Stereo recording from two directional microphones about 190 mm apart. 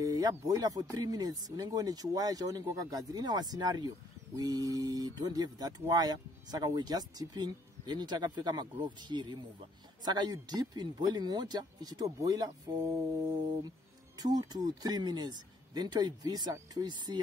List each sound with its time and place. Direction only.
0.0 s speech: 20° right (ahead or behind)
14.1 s speech: 20° right (ahead or behind)